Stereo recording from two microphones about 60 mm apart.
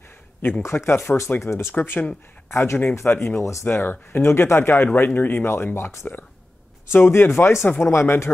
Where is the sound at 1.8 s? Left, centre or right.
Left.